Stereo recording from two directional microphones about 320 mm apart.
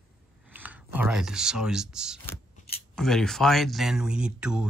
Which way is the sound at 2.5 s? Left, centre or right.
Left.